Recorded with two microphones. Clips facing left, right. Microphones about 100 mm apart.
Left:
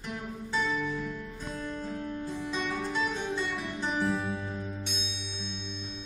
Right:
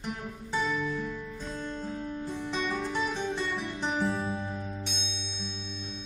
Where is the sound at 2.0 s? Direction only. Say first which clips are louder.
Even; 20° right (ahead or behind).